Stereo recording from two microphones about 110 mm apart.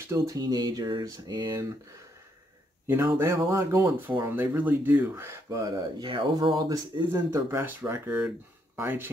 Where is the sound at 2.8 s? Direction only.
25° right (ahead or behind).